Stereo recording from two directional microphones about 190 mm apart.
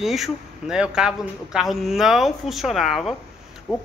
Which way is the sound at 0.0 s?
Centre (ahead or behind).